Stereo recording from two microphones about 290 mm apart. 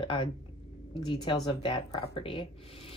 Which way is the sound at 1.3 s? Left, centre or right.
Centre.